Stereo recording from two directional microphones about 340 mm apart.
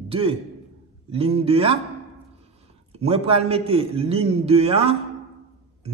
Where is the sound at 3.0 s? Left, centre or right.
Centre.